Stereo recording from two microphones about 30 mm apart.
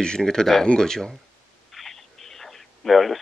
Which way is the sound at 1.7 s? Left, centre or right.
Centre.